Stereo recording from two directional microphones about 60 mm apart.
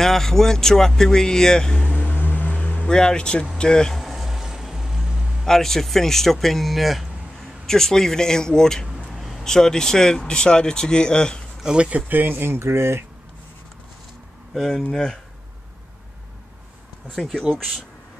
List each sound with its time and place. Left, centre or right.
0.0 s speech: centre
2.0 s vehicle: left
2.5 s vehicle: left
3.5 s speech: centre
4.0 s vehicle: centre
5.4 s speech: centre
9.1 s a sound: centre
9.4 s speech: centre
11.6 s speech: centre
12.1 s speech: right
14.5 s speech: centre
17.1 s speech: centre